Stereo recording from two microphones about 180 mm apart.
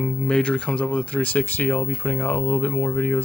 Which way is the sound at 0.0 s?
5° left (ahead or behind).